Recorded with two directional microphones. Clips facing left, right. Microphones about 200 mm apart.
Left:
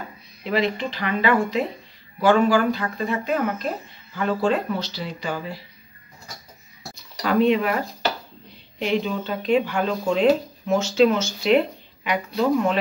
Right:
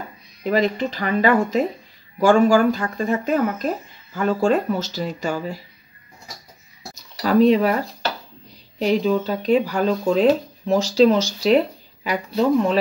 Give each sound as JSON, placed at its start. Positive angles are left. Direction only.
{"t": 0.4, "sound": "speech", "side_deg": -45}
{"t": 7.0, "sound": "a sound", "side_deg": -35}
{"t": 8.7, "sound": "speech", "side_deg": -40}